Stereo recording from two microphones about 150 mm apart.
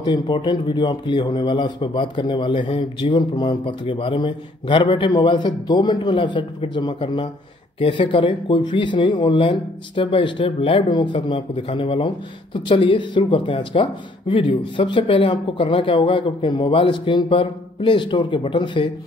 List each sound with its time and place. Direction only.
0.0 s a man's voice: 30° left (ahead or behind)